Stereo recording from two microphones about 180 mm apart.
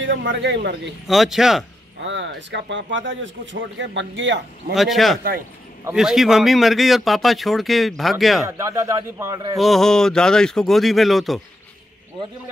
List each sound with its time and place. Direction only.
0.0 s speech: 90° right; by 0.7 s 75° right (ahead or behind)
1.0 s speech: centre (ahead or behind)
2.0 s speech: 90° right
4.7 s speech: centre (ahead or behind)
8.5 s speech: 15° right (ahead or behind)
9.6 s speech: centre (ahead or behind)